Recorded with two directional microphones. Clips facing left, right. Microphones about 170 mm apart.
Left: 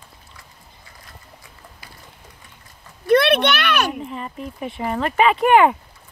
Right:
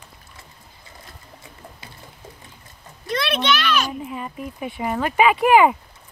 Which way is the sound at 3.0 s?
60° left (ahead or behind).